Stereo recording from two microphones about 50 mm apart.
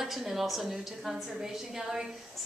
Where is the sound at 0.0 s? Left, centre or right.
Centre.